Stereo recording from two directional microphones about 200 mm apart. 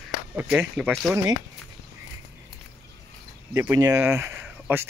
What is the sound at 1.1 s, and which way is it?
Speech, 15° right (ahead or behind).